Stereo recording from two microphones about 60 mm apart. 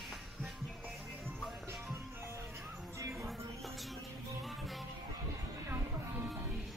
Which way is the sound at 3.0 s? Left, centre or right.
Right.